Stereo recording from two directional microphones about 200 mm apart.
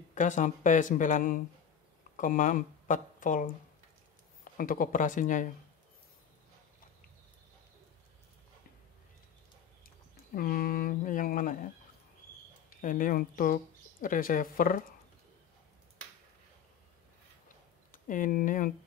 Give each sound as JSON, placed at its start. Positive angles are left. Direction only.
{"t": 0.1, "sound": "speech", "side_deg": 40}
{"t": 4.6, "sound": "speech", "side_deg": 45}
{"t": 10.3, "sound": "a sound", "side_deg": 45}
{"t": 12.6, "sound": "speech", "side_deg": 40}
{"t": 14.0, "sound": "a sound", "side_deg": 45}
{"t": 17.9, "sound": "speech", "side_deg": 40}